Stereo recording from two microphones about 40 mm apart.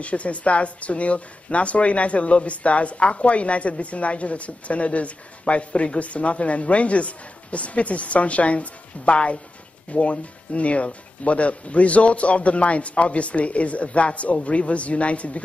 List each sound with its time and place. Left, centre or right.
0.0 s speech: left